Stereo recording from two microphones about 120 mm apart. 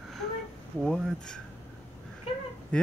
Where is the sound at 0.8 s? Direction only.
5° left (ahead or behind).